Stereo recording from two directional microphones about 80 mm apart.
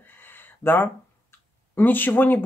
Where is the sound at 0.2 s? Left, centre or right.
Left.